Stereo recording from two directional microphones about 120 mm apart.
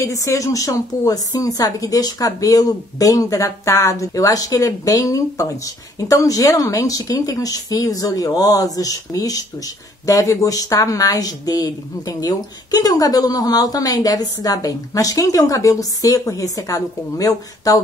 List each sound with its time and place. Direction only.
0.0 s speech: 25° left (ahead or behind)